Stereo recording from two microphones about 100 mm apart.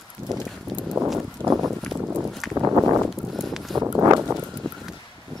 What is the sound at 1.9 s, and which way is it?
Clip-clop, 15° right (ahead or behind).